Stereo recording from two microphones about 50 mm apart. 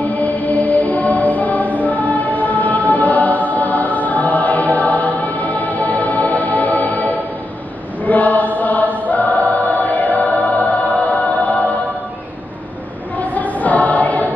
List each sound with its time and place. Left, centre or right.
0.0 s music: left
8.0 s choir: left
13.2 s choir: left